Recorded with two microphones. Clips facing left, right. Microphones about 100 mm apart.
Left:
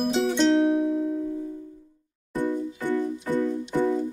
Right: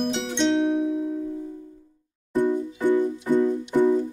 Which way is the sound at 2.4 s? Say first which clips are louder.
Right 5 dB; 15° right (ahead or behind).